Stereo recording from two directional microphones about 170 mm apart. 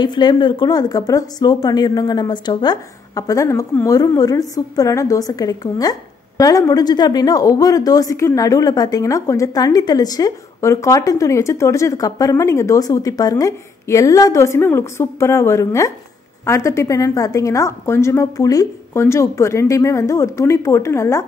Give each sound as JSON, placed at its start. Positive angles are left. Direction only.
{"t": 0.0, "sound": "a woman's voice", "side_deg": 25}